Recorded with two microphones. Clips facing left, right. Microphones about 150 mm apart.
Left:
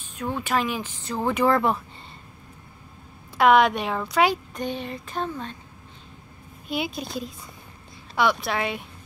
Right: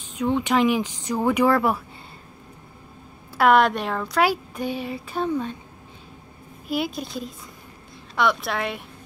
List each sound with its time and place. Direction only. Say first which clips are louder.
0.0 s speech: right 6 dB; 15° right (ahead or behind)
3.3 s speech: even; centre (ahead or behind)
4.2 s speech: even; 5° right (ahead or behind)
6.7 s speech: right 2 dB; centre (ahead or behind)